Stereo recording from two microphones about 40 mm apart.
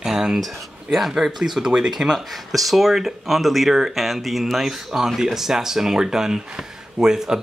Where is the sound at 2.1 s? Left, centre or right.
Centre.